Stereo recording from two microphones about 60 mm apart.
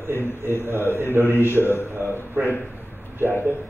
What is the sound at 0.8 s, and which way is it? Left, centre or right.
A man's voice, left.